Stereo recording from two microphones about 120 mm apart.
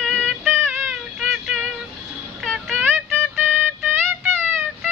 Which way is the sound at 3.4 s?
15° right (ahead or behind).